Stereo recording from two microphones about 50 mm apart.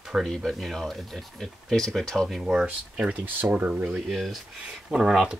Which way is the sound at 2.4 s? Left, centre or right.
Centre.